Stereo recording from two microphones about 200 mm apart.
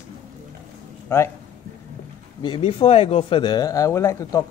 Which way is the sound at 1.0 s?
10° left (ahead or behind).